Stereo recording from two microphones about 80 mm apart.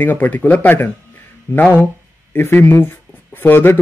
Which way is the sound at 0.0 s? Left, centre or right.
Left.